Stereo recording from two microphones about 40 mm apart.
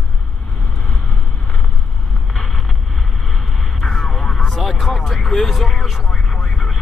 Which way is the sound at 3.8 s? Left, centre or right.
Centre.